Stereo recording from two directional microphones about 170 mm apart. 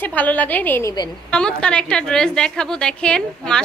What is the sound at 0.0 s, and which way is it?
A woman's voice, 10° left (ahead or behind).